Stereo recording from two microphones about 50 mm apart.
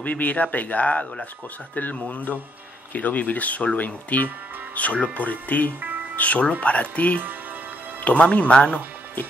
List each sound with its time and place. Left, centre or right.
0.0 s speech: left